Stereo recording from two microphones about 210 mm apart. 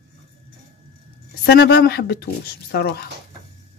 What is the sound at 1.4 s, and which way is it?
Speech, 50° left (ahead or behind).